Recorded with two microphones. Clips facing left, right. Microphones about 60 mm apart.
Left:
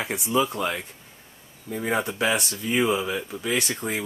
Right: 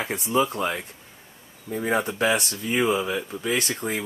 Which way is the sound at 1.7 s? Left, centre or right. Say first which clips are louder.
Right 1 dB; centre.